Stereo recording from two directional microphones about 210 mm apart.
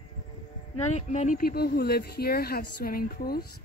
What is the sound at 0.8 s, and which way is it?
Speech, 30° left (ahead or behind).